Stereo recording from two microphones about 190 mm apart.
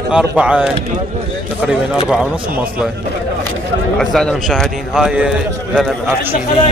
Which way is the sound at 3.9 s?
5° left (ahead or behind).